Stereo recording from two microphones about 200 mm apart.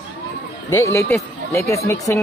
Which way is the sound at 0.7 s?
15° left (ahead or behind).